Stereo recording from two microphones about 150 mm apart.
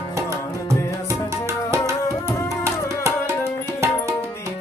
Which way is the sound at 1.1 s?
20° right (ahead or behind).